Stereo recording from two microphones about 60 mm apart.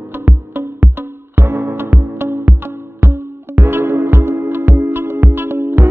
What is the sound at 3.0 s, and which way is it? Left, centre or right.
Music, right.